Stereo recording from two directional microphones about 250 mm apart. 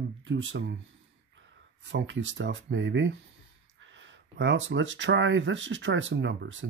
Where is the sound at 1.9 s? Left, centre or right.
Right.